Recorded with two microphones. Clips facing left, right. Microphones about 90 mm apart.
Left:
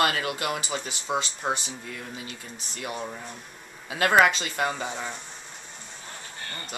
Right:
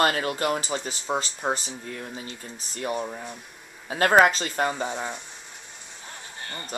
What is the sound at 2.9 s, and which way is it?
Speech, 10° right (ahead or behind).